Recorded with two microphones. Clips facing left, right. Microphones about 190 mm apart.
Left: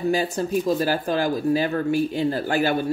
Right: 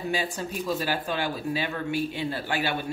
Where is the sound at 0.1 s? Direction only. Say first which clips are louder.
Left 7 dB; 40° left (ahead or behind).